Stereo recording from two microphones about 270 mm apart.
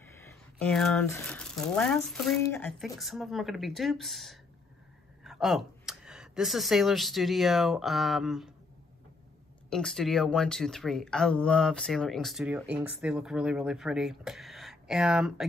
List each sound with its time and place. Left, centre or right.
0.6 s speech: centre
9.7 s speech: centre